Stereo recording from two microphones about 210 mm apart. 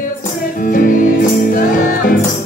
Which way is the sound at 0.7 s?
40° left (ahead or behind).